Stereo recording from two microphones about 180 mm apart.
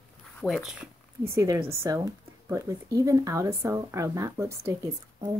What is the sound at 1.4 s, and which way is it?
A woman's voice, 20° right (ahead or behind).